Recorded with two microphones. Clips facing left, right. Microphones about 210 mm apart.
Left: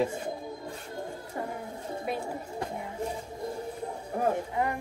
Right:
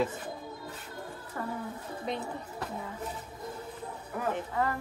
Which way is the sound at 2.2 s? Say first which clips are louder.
Left 3 dB; 25° left (ahead or behind).